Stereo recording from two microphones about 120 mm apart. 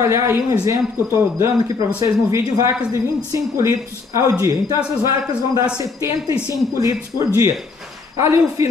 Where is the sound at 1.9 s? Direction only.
25° right (ahead or behind).